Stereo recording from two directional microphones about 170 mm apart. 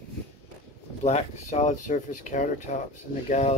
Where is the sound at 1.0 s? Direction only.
45° left (ahead or behind).